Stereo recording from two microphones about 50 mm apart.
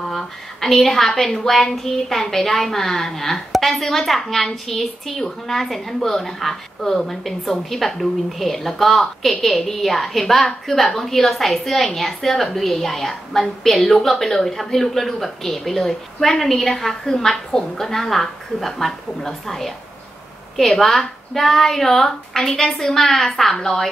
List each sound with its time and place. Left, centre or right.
0.0 s a woman's voice: centre